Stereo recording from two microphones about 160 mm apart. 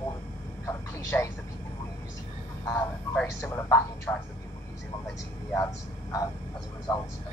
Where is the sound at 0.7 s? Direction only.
20° left (ahead or behind).